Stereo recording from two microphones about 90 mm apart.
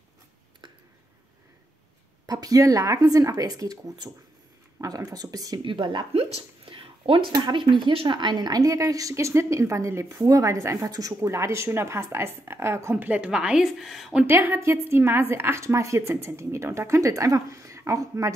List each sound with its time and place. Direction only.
2.2 s speech: 40° right (ahead or behind)
5.6 s a woman's voice: 65° right (ahead or behind); by 7.3 s 90° right
7.3 s speech: 55° right (ahead or behind); by 8.2 s 75° right (ahead or behind)
8.2 s a woman's voice: 55° right (ahead or behind); by 12.9 s 30° right (ahead or behind)
12.9 s a woman's voice: 15° right (ahead or behind)
14.2 s a woman's voice: 25° right (ahead or behind)